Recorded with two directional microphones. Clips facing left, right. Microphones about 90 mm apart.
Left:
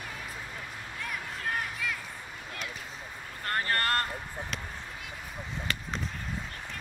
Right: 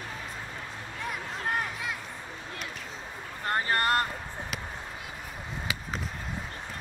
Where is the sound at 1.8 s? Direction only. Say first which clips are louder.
Even; 20° right (ahead or behind).